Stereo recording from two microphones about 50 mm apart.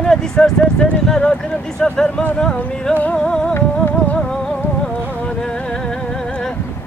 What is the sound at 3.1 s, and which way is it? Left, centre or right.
Music, centre.